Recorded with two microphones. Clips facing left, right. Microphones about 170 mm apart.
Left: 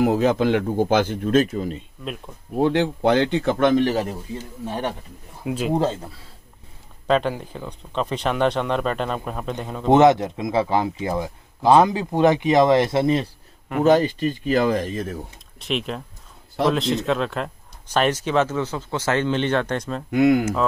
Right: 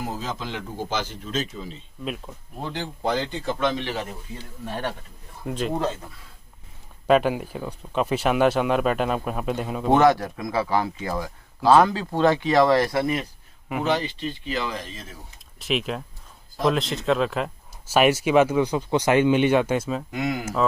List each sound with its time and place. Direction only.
0.0 s a man's voice: 65° left (ahead or behind)
2.5 s a man's voice: 65° left (ahead or behind); by 4.5 s 40° left (ahead or behind)
4.6 s speech: 20° left (ahead or behind)
5.4 s speech: 5° left (ahead or behind)
5.8 s speech: 30° left (ahead or behind)
7.1 s speech: 10° right (ahead or behind)
9.8 s speech: 20° left (ahead or behind)
13.8 s speech: 45° left (ahead or behind)
15.6 s speech: centre (ahead or behind)
20.1 s a man's voice: 60° left (ahead or behind)